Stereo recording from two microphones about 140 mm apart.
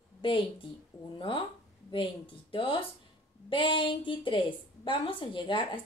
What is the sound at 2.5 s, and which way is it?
A woman's voice, 40° left (ahead or behind).